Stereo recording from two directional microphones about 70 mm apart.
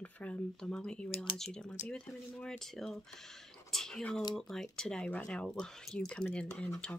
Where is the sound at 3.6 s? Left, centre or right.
Centre.